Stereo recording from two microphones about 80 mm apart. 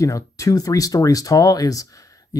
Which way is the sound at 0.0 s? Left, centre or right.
Left.